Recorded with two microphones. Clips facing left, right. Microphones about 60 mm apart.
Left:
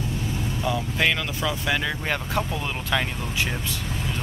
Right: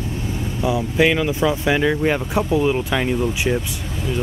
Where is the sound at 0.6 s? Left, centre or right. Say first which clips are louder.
Right 7 dB; centre.